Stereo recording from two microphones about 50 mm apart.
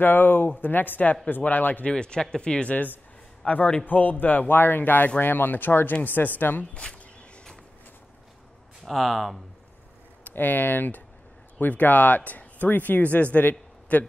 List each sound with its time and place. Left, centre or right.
0.0 s speech: left
1.9 s speech: centre
2.7 s speech: left
3.4 s speech: left
3.8 s speech: left
6.7 s speech: left
8.8 s speech: centre
10.2 s speech: left